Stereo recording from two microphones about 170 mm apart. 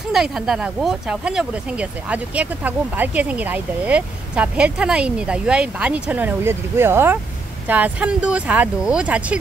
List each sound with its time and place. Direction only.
0.1 s speech: 5° right (ahead or behind)